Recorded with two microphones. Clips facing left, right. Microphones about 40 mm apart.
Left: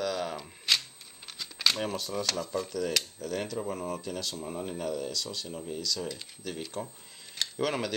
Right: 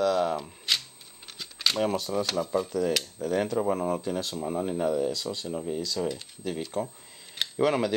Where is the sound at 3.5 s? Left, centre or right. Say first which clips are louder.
Right 8 dB; right.